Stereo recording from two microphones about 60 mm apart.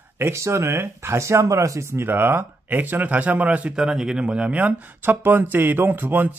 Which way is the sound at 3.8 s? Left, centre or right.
Centre.